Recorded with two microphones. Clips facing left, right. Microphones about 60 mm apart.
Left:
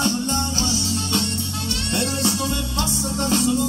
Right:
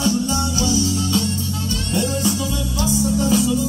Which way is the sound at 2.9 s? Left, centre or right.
Left.